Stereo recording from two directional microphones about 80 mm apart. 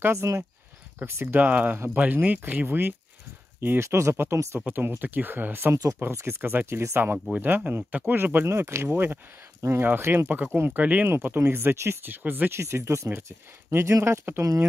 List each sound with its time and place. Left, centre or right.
0.0 s speech: right
4.6 s speech: right
10.2 s speech: centre